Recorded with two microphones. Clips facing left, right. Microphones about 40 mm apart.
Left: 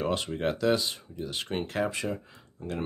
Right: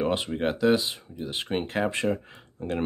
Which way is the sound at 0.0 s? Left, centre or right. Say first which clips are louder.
Right 3 dB; centre.